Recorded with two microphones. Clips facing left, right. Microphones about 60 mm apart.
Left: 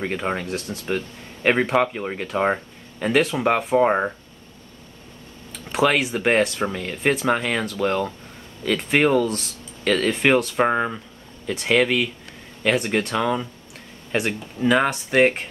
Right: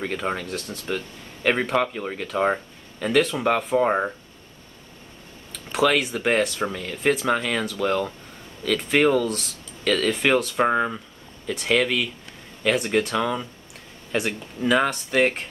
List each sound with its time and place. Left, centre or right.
0.0 s speech: centre
6.1 s speech: centre
9.8 s speech: centre